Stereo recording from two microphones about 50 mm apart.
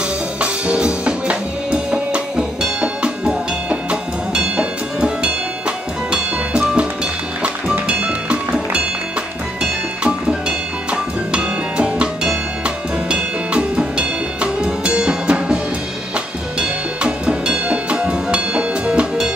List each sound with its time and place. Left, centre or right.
0.4 s music: right
9.6 s music: right